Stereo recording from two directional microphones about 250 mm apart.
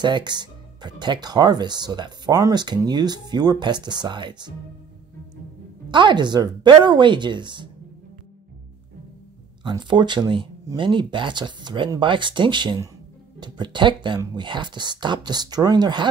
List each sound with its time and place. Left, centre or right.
0.0 s speech: centre
5.9 s speech: centre
9.6 s speech: centre